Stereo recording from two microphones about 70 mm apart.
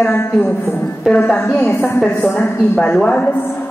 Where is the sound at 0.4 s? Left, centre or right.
Left.